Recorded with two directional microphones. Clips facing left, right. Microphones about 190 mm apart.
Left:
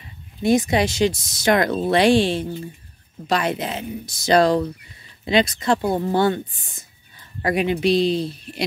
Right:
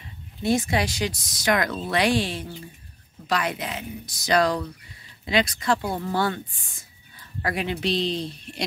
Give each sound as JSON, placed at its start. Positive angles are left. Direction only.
{"t": 0.4, "sound": "speech", "side_deg": 15}